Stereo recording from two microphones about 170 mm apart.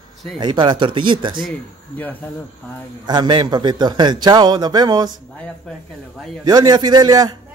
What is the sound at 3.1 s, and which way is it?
A man's voice, 30° right (ahead or behind).